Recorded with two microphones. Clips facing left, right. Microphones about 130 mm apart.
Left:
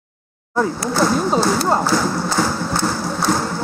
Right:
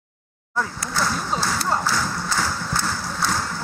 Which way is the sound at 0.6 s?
25° left (ahead or behind).